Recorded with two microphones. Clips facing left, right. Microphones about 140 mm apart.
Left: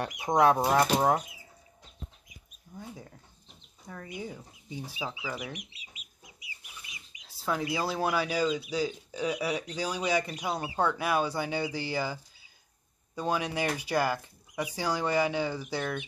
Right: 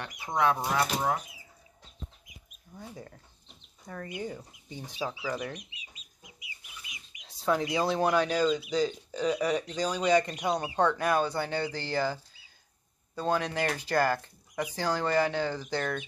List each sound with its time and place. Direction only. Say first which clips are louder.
0.3 s speech: left 4 dB; 40° left (ahead or behind)
2.7 s mouse: left 3 dB; 10° left (ahead or behind)
3.8 s speech: right 3 dB; centre (ahead or behind)
7.2 s a sound: right 4 dB; 5° left (ahead or behind)
7.7 s speech: right 3 dB; 5° left (ahead or behind)